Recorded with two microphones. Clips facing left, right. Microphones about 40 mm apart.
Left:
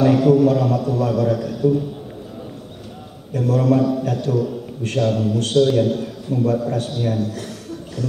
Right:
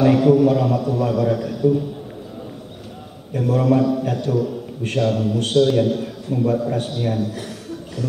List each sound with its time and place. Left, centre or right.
0.0 s a man's voice: centre
3.3 s a man's voice: centre